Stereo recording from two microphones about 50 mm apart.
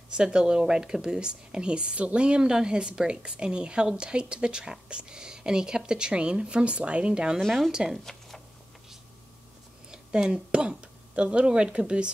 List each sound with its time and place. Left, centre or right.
0.1 s speech: centre
7.4 s speech: centre
7.7 s speech: centre
8.0 s a sound: centre
9.8 s a sound: centre
10.7 s speech: centre